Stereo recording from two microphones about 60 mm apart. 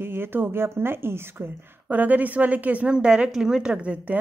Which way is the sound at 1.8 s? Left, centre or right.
Right.